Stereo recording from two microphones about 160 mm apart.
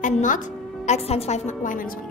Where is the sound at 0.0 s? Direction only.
50° left (ahead or behind).